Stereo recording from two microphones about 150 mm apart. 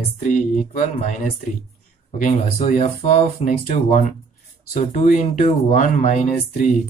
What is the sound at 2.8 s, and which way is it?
Speech, 55° left (ahead or behind).